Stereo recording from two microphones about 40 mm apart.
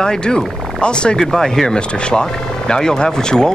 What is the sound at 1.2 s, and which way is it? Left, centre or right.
Speech, centre.